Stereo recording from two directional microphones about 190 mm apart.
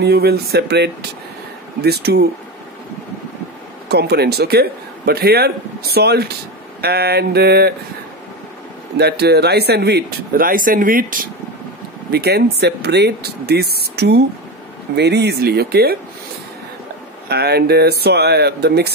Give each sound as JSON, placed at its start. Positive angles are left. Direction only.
{"t": 0.0, "sound": "a man's voice", "side_deg": -55}
{"t": 3.9, "sound": "a man's voice", "side_deg": -60}
{"t": 8.9, "sound": "a man's voice", "side_deg": -60}
{"t": 12.1, "sound": "a man's voice", "side_deg": -60}
{"t": 17.3, "sound": "a man's voice", "side_deg": -55}